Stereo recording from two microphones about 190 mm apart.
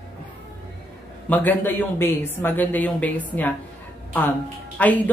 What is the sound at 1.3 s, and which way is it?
Speech, 10° left (ahead or behind).